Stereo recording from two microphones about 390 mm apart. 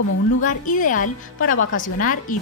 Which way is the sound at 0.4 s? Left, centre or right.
Centre.